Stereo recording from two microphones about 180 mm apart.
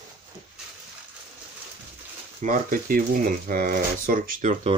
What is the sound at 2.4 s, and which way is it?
Speech, 50° right (ahead or behind).